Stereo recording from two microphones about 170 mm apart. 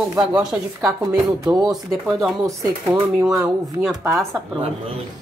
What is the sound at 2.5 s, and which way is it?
Speech, 20° right (ahead or behind).